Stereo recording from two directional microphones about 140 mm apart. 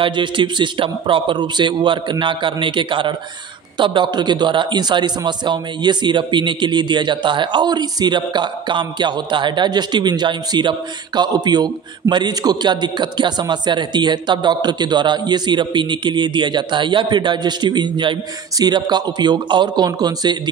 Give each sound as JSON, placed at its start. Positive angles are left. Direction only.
{"t": 0.0, "sound": "a man's voice", "side_deg": -35}